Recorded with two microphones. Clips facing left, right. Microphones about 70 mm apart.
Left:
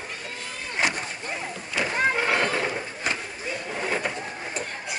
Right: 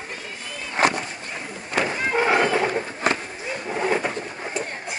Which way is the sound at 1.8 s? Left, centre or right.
Right.